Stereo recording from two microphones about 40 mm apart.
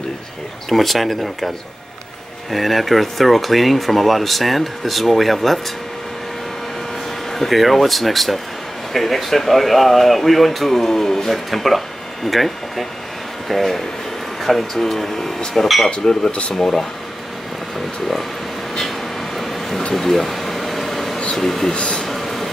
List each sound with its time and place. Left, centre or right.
0.7 s speech: centre
2.5 s speech: centre
7.3 s speech: centre
16.3 s speech: left
16.5 s speech: centre
18.8 s vehicle: centre
19.9 s a sound: centre
21.4 s speech: centre
21.7 s speech: left
22.0 s a sound: centre